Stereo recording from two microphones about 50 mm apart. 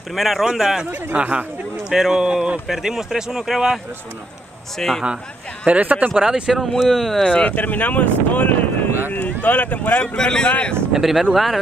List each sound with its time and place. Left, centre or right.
0.1 s speech: centre
1.1 s speech: right
1.9 s speech: centre
2.7 s speech: centre
4.7 s speech: centre
5.7 s speech: right
6.5 s speech: centre
7.3 s speech: left
9.9 s speech: centre
10.9 s speech: centre